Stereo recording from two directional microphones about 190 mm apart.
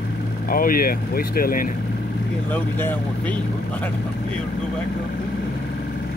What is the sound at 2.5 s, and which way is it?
Speech, 10° left (ahead or behind).